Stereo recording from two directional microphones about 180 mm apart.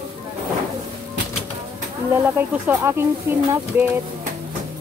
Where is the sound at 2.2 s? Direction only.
10° right (ahead or behind).